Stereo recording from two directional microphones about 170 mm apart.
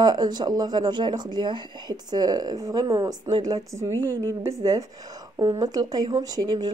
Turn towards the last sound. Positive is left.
turn(degrees=-25)  # may be behind; listen again after turning